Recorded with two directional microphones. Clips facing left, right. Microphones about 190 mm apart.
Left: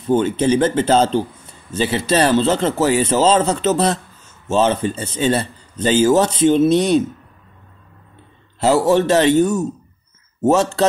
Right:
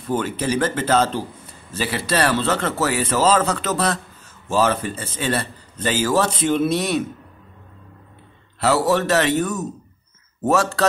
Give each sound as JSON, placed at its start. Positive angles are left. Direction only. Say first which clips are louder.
{"t": 0.0, "sound": "speech", "louder": "left 7 dB", "side_deg": 25}
{"t": 8.6, "sound": "speech", "louder": "left 4 dB", "side_deg": 25}